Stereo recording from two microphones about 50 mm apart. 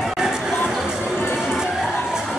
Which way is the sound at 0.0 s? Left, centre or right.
Centre.